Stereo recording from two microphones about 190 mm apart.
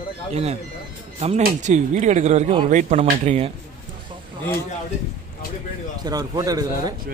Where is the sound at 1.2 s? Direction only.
35° right (ahead or behind).